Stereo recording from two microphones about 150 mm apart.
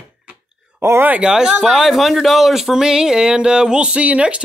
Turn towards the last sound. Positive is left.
turn(degrees=-10)  # may be behind; listen again after turning